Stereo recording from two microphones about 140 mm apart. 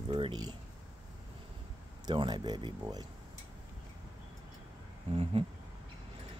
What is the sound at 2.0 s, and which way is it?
Speech, 30° right (ahead or behind).